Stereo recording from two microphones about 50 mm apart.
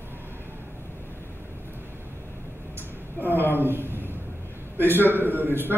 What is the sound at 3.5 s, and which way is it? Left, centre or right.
Speech, right.